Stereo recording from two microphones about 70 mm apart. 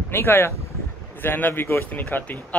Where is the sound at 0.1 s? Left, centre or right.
Left.